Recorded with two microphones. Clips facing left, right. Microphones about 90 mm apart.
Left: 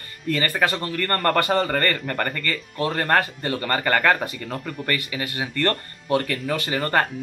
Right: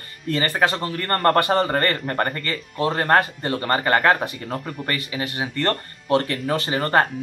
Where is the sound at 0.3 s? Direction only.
25° right (ahead or behind).